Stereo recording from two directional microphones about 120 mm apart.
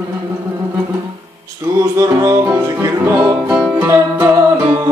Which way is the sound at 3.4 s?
10° right (ahead or behind).